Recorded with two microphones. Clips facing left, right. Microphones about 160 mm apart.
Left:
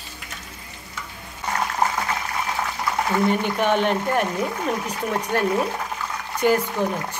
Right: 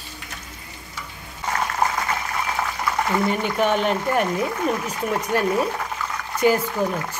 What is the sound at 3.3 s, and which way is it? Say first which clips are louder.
A woman's voice: even; centre (ahead or behind).